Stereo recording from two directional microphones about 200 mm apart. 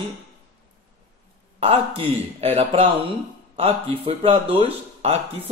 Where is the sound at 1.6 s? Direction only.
30° right (ahead or behind).